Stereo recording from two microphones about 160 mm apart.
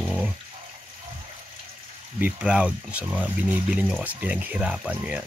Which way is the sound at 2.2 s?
10° right (ahead or behind).